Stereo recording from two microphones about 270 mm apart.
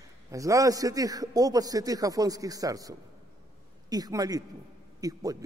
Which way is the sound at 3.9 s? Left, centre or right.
Centre.